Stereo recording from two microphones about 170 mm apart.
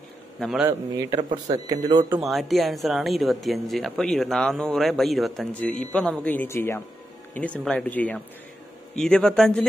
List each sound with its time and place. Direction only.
0.4 s speech: 5° right (ahead or behind)
0.7 s a man's voice: 20° right (ahead or behind)
2.0 s speech: 5° right (ahead or behind)